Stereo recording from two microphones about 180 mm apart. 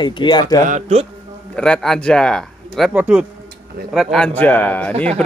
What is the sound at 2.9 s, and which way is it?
Speech, 5° right (ahead or behind).